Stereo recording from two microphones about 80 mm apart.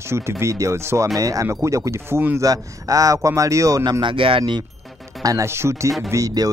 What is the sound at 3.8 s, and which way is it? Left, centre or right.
Speech, right.